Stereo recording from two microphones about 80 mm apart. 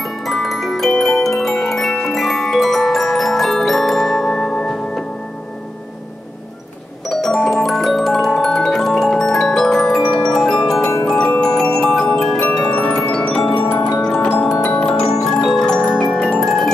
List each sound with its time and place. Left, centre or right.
0.0 s music: centre
7.1 s music: centre
11.1 s marimba: centre
12.7 s glockenspiel: centre
13.8 s music: centre
14.9 s marimba: centre